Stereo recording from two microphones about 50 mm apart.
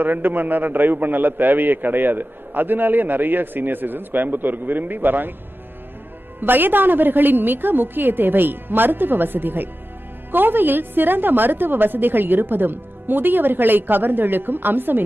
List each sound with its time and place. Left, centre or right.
0.0 s a man's voice: right
6.4 s a man's voice: right